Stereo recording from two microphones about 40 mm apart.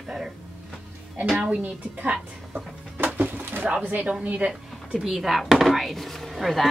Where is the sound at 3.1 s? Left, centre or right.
Right.